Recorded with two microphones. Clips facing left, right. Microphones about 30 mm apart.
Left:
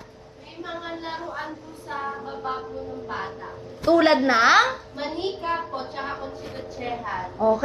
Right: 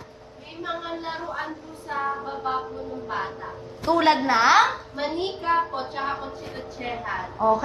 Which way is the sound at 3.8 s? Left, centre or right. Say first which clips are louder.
Left 2 dB; centre.